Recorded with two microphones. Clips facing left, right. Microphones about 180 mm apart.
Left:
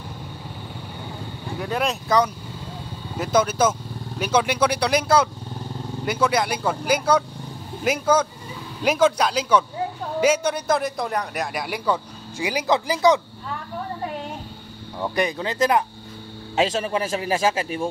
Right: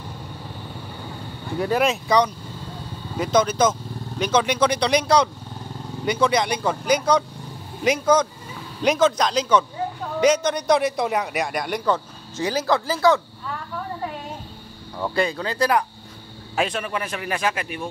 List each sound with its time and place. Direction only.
1.6 s a man's voice: centre (ahead or behind); by 13.2 s 15° left (ahead or behind)
15.0 s a man's voice: 20° left (ahead or behind)